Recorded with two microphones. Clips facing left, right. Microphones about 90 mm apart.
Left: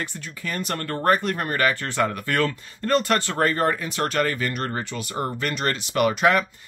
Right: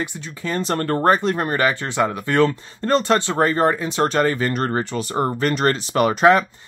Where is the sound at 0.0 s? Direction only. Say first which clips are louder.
Right 4 dB; 25° right (ahead or behind).